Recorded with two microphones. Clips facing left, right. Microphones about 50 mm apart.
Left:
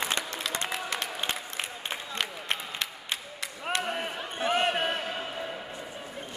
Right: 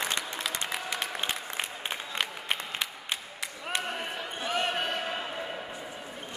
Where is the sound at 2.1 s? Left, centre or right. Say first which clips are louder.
Even; centre.